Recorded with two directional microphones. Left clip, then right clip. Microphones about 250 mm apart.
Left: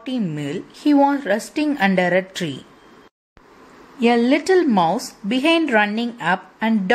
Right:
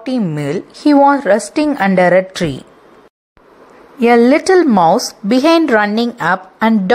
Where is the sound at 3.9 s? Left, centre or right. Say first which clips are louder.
Right 8 dB; centre.